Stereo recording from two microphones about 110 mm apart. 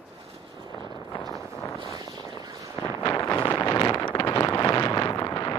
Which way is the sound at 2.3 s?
35° right (ahead or behind).